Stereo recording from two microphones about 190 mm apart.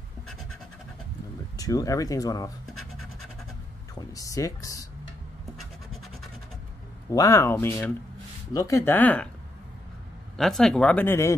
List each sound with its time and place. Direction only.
1.6 s speech: 20° left (ahead or behind)
4.0 s speech: 15° left (ahead or behind)
7.1 s speech: 15° left (ahead or behind)
10.3 s speech: centre (ahead or behind)